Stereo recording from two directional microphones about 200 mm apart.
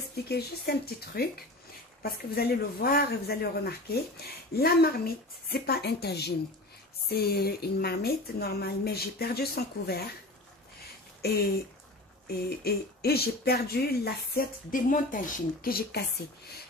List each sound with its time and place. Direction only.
0.3 s speech: 50° left (ahead or behind)
11.2 s speech: 50° left (ahead or behind)